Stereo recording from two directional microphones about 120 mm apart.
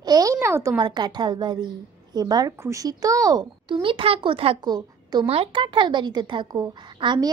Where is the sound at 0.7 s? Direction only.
40° right (ahead or behind).